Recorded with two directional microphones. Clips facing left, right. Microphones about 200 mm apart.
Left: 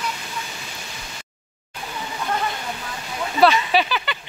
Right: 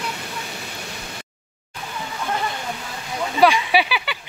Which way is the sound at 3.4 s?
10° right (ahead or behind).